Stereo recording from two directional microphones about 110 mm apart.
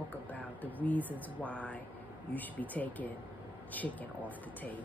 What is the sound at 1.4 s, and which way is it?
A woman's voice, 10° left (ahead or behind).